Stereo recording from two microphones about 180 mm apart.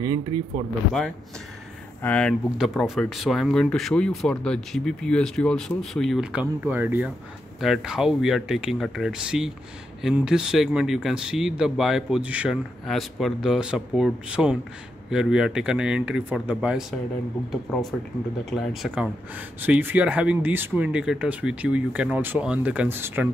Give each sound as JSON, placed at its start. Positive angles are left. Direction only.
{"t": 0.0, "sound": "speech", "side_deg": -25}
{"t": 2.0, "sound": "speech", "side_deg": 5}
{"t": 18.4, "sound": "speech", "side_deg": 0}
{"t": 19.6, "sound": "speech", "side_deg": -10}